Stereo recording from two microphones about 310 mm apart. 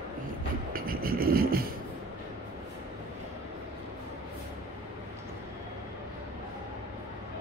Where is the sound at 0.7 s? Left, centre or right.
Right.